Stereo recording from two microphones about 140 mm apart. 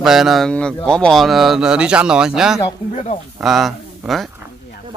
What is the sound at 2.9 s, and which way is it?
Speech, 50° left (ahead or behind).